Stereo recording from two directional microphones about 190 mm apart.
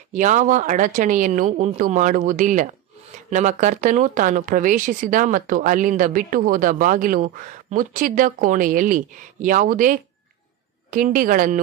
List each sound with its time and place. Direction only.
0.1 s speech: 40° right (ahead or behind)